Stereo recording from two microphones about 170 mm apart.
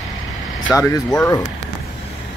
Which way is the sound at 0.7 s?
20° left (ahead or behind).